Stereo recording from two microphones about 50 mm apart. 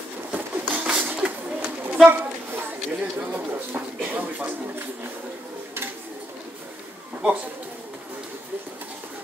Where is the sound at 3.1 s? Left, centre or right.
Right.